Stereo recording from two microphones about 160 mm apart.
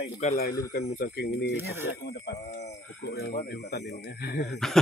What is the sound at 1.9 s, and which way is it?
Speech, 75° left (ahead or behind).